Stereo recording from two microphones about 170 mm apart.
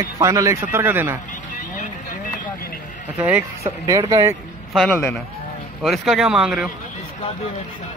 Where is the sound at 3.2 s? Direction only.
10° right (ahead or behind).